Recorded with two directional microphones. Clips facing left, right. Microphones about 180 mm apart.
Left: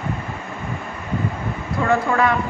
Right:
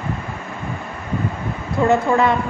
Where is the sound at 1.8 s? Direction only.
25° right (ahead or behind).